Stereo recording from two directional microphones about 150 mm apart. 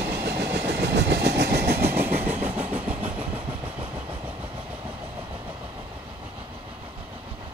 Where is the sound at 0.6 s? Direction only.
90° right.